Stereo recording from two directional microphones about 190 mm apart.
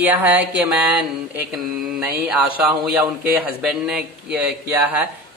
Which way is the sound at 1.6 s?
Centre (ahead or behind).